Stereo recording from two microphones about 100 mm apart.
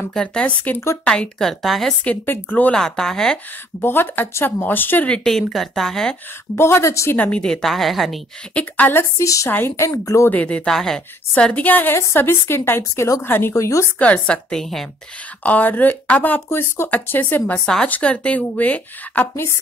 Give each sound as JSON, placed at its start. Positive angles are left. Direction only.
{"t": 0.1, "sound": "a woman's voice", "side_deg": 10}
{"t": 2.0, "sound": "speech", "side_deg": 15}
{"t": 2.8, "sound": "a woman's voice", "side_deg": 5}
{"t": 3.8, "sound": "speech", "side_deg": 20}
{"t": 6.5, "sound": "a woman's voice", "side_deg": 25}
{"t": 7.2, "sound": "a woman's voice", "side_deg": 10}
{"t": 8.5, "sound": "speech", "side_deg": 15}
{"t": 9.2, "sound": "speech", "side_deg": 30}
{"t": 9.5, "sound": "a woman's voice", "side_deg": 20}
{"t": 10.3, "sound": "speech", "side_deg": 15}
{"t": 11.3, "sound": "a woman's voice", "side_deg": 15}
{"t": 13.9, "sound": "speech", "side_deg": 15}
{"t": 15.4, "sound": "speech", "side_deg": 15}